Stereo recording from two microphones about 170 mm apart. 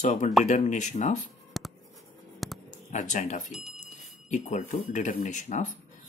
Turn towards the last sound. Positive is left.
turn(degrees=45)  # may be behind; listen again after turning